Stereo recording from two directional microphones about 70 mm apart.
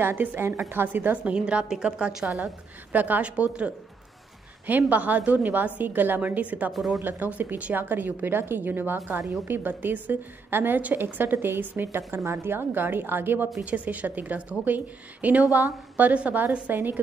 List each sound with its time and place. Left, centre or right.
0.0 s a woman's voice: right
6.7 s speech: centre
7.0 s a woman's voice: right
16.7 s a woman's voice: right